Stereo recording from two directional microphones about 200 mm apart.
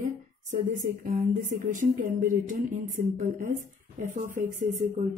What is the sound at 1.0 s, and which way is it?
Speech, 45° right (ahead or behind).